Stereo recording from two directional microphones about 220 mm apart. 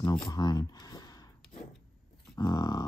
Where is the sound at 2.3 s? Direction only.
15° left (ahead or behind).